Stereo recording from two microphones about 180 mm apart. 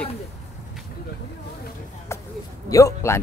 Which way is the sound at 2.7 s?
15° left (ahead or behind).